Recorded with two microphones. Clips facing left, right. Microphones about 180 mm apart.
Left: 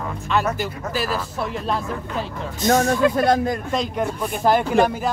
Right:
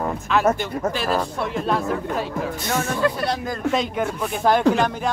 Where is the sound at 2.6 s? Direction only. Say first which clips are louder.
Left 7 dB; 40° left (ahead or behind).